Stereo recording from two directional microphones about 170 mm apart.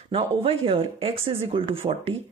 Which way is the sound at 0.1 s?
35° right (ahead or behind).